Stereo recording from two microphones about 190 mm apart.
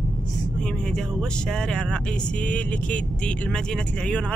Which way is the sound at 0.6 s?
5° left (ahead or behind).